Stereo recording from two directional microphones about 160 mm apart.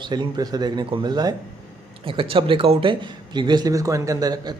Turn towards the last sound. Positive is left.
turn(degrees=-25)  # may be behind; listen again after turning